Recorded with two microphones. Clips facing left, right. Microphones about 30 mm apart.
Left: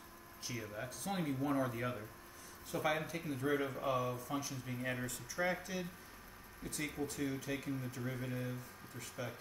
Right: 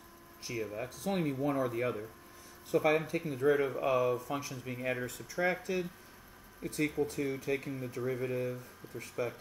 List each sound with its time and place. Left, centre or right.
0.6 s speech: right
3.8 s speech: right